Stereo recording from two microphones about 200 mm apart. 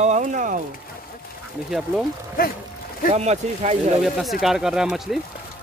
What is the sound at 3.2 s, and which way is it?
Speech, 35° right (ahead or behind).